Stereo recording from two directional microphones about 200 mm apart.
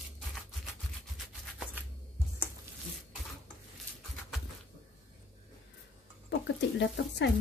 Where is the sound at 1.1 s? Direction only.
Centre (ahead or behind).